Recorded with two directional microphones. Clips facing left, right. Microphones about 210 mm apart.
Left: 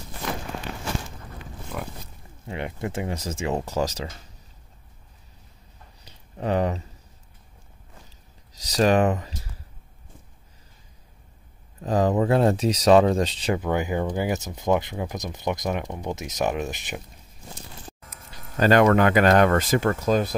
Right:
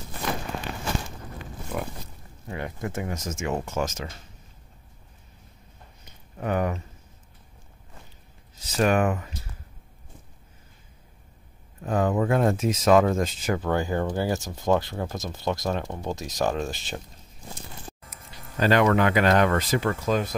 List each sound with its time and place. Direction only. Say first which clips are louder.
2.4 s speech: left 2 dB; 25° left (ahead or behind)
6.3 s speech: left 2 dB; 30° left (ahead or behind)
8.6 s speech: left 3 dB; 35° left (ahead or behind)
11.8 s speech: left 2 dB; 35° left (ahead or behind)
13.6 s speech: right 2 dB; 15° left (ahead or behind)
18.6 s speech: left 3 dB; 45° left (ahead or behind)